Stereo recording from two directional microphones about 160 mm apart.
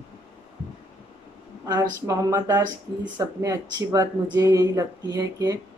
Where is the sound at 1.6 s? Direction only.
20° right (ahead or behind).